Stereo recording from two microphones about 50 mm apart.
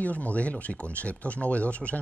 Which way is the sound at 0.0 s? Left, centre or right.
Left.